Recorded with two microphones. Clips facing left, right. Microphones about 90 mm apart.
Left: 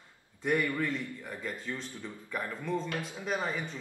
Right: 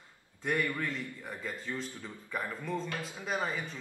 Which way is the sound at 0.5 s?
15° left (ahead or behind).